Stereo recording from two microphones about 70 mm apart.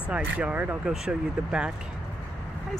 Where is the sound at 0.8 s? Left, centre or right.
Centre.